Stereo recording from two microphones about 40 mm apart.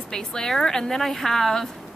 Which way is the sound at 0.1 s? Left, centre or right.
Centre.